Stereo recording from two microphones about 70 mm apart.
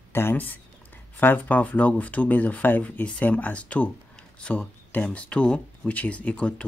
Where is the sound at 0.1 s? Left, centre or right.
Left.